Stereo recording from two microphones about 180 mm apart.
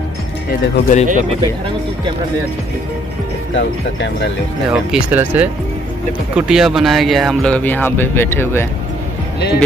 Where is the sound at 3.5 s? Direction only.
75° left (ahead or behind).